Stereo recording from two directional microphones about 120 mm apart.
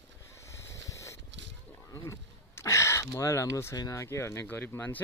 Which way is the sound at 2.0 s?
25° left (ahead or behind).